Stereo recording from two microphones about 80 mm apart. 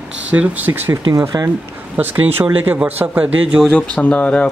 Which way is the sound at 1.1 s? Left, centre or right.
Right.